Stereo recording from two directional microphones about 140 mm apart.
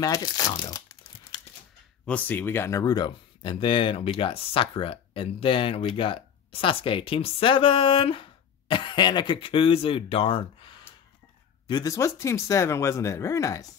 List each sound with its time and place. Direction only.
0.0 s speech: 25° left (ahead or behind)
2.0 s speech: 10° left (ahead or behind); by 10.8 s 40° left (ahead or behind)
11.6 s speech: 30° left (ahead or behind)